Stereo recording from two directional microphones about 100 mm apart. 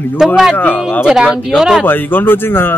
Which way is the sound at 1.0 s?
5° right (ahead or behind).